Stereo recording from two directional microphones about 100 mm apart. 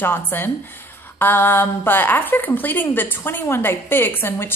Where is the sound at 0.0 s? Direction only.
20° left (ahead or behind).